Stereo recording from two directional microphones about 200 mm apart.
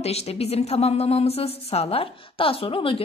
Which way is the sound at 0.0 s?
30° left (ahead or behind).